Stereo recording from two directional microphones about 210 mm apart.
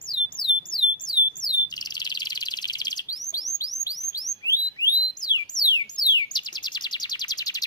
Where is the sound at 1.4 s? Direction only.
20° left (ahead or behind).